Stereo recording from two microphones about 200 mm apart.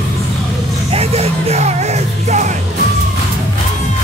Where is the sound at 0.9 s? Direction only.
30° right (ahead or behind).